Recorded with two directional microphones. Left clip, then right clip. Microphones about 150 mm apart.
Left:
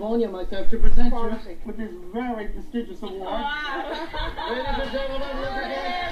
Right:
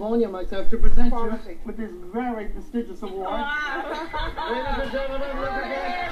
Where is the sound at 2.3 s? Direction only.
25° right (ahead or behind).